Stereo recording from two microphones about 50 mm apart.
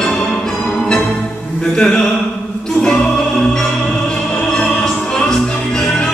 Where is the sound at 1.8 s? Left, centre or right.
Centre.